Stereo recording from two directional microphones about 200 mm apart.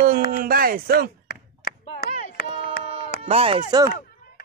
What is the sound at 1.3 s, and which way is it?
Clapping, 50° left (ahead or behind).